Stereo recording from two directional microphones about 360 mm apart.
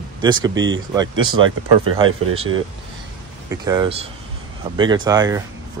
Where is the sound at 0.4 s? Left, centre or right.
Right.